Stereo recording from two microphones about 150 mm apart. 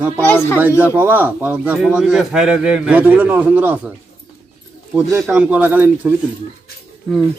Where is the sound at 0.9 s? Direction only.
10° right (ahead or behind).